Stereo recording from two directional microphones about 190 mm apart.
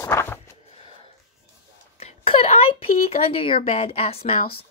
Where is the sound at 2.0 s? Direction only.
30° left (ahead or behind).